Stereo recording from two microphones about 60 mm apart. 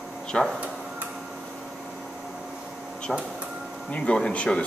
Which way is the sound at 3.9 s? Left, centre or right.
Centre.